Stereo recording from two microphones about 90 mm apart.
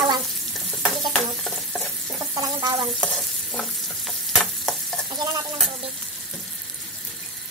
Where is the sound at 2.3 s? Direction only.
45° right (ahead or behind).